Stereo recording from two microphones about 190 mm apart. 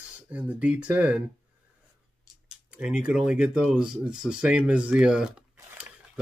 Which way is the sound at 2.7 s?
5° right (ahead or behind).